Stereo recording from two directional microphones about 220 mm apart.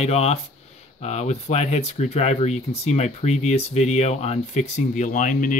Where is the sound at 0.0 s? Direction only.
30° left (ahead or behind).